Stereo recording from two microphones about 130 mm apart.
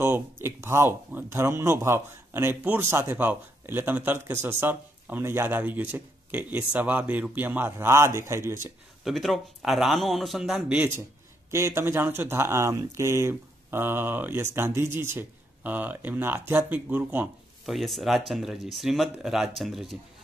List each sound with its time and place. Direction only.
0.0 s speech: 20° right (ahead or behind)
9.0 s speech: centre (ahead or behind)
11.5 s speech: 20° right (ahead or behind)
17.6 s speech: centre (ahead or behind)